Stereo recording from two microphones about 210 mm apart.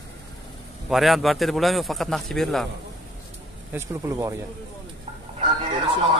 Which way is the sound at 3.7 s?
15° right (ahead or behind).